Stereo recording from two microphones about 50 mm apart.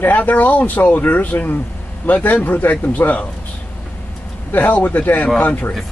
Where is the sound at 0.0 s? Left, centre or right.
Left.